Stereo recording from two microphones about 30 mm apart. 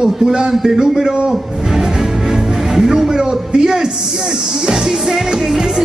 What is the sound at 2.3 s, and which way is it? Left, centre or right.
Music, centre.